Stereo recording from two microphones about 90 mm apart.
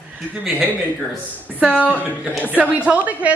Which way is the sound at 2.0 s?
20° right (ahead or behind).